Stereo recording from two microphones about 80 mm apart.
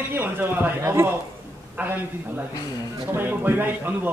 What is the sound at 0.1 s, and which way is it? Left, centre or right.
Speech, right.